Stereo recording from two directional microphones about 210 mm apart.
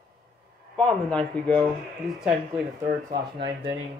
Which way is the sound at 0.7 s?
5° left (ahead or behind).